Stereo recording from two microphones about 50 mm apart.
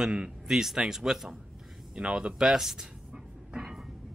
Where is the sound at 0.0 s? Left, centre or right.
Centre.